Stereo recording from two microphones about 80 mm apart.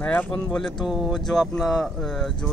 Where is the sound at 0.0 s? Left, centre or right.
Centre.